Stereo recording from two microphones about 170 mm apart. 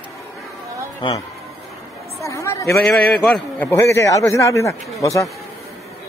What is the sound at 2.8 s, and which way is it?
A man's voice, 5° left (ahead or behind).